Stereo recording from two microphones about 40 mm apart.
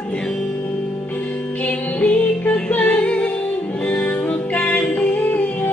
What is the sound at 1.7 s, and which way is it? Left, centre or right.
Music, left.